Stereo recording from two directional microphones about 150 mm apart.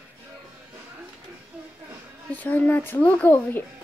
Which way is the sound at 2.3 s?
10° left (ahead or behind).